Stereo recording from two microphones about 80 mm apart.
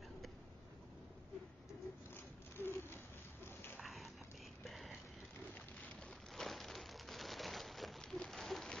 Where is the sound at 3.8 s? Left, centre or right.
Centre.